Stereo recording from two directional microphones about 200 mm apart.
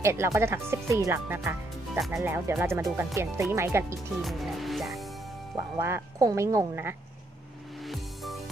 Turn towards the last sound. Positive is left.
turn(degrees=-15)  # may be behind; listen again after turning